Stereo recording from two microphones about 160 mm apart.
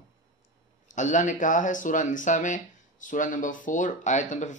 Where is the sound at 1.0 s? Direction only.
50° left (ahead or behind).